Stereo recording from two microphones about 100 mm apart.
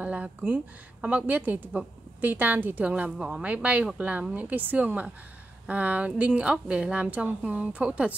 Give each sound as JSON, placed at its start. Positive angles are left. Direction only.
{"t": 0.0, "sound": "a woman's voice", "side_deg": -15}